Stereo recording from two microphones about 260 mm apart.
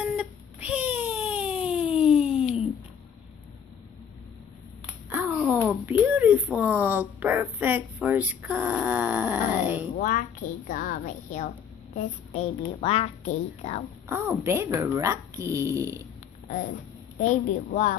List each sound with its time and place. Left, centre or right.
0.0 s a sound: centre
5.1 s speech: centre
9.9 s a woman's voice: left
14.0 s speech: centre
17.2 s a woman's voice: left